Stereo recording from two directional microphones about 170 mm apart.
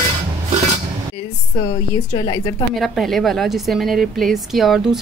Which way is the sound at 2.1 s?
25° left (ahead or behind).